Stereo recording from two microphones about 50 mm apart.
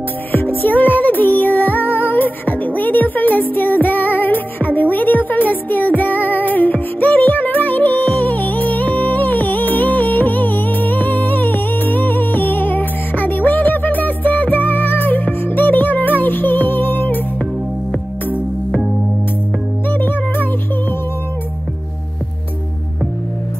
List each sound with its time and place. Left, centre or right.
0.3 s music: left
19.9 s music: left